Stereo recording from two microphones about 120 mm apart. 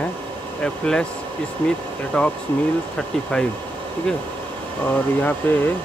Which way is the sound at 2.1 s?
5° left (ahead or behind).